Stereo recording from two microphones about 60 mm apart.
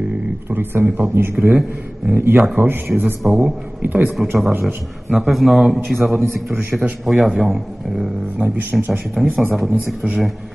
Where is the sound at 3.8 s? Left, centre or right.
Right.